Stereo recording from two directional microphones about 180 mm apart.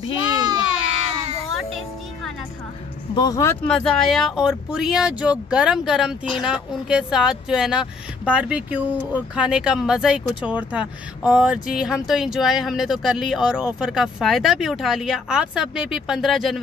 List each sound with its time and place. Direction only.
0.2 s baby cry: 20° right (ahead or behind)
1.5 s music: centre (ahead or behind)
3.2 s speech: 20° left (ahead or behind)
3.6 s speech: 5° left (ahead or behind)